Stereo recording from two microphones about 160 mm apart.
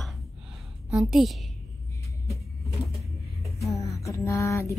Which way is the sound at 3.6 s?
20° left (ahead or behind).